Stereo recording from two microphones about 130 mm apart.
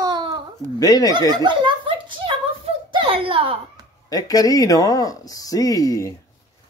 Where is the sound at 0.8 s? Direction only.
25° left (ahead or behind).